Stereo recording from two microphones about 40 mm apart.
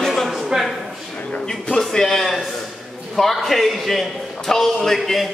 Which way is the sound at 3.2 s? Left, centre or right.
Centre.